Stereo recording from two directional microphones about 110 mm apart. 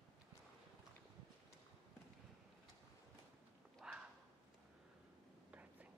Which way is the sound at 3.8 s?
Centre (ahead or behind).